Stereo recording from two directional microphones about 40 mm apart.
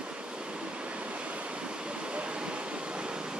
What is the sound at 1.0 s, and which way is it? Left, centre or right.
Waves, right.